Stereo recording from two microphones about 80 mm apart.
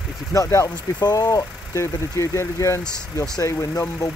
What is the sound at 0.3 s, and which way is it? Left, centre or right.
Speech, left.